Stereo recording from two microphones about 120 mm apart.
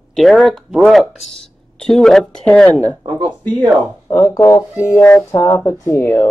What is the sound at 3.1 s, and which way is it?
Speech, 40° right (ahead or behind).